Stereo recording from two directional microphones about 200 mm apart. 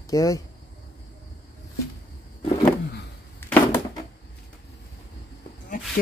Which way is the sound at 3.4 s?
10° left (ahead or behind).